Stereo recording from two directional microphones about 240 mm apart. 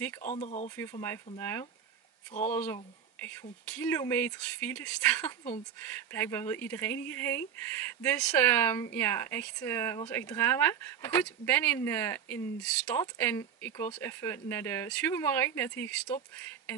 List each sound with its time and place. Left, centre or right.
0.2 s speech: left
1.0 s speech: centre